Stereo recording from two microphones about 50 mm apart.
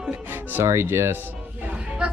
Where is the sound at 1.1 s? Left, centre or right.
Right.